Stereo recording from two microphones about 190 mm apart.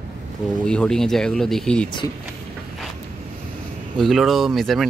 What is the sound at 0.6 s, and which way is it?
Speech, 5° left (ahead or behind).